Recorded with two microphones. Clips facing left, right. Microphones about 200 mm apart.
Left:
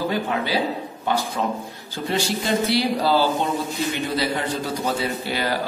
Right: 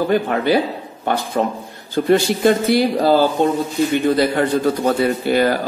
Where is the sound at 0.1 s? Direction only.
55° right (ahead or behind).